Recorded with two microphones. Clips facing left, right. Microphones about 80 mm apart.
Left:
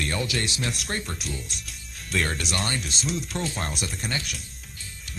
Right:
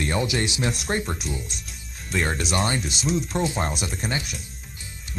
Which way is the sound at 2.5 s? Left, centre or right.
Right.